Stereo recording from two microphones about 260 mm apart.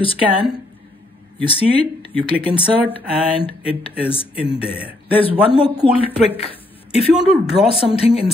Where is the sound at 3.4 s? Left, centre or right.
Left.